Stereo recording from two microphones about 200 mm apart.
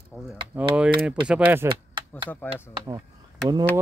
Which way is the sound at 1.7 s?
25° right (ahead or behind).